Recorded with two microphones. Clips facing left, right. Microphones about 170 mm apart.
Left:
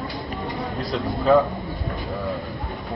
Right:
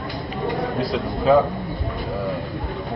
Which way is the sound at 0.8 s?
Centre (ahead or behind).